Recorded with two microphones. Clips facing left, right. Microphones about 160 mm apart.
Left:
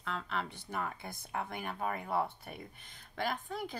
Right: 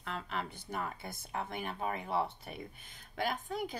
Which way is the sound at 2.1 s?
25° right (ahead or behind).